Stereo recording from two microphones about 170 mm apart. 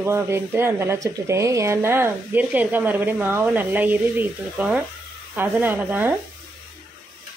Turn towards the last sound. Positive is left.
turn(degrees=-10)  # may be behind; listen again after turning